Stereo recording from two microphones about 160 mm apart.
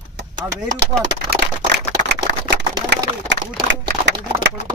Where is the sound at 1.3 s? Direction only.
90° right.